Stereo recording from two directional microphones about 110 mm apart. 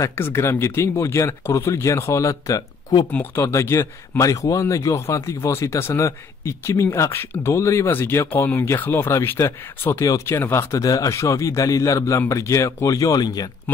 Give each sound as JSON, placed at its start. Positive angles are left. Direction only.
{"t": 0.0, "sound": "speech", "side_deg": 20}
{"t": 3.1, "sound": "speech", "side_deg": 20}